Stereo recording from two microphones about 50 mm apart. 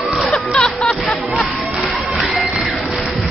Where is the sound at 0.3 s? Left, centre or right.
Centre.